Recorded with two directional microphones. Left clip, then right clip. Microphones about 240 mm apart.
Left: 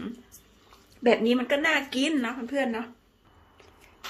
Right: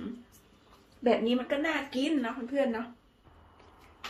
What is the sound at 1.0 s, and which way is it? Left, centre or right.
Speech, left.